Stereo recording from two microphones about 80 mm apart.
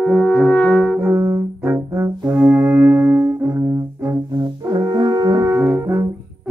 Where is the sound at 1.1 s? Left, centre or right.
Right.